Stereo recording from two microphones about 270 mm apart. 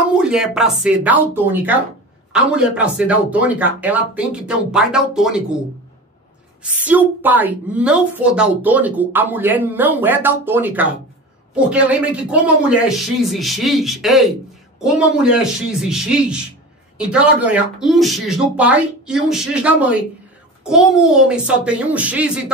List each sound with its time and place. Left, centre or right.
0.1 s speech: centre
6.6 s a woman's voice: centre